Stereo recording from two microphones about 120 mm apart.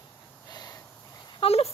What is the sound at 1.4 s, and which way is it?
Speech, 55° left (ahead or behind).